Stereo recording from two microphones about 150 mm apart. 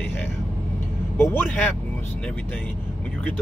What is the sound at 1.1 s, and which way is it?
Speech, 15° left (ahead or behind).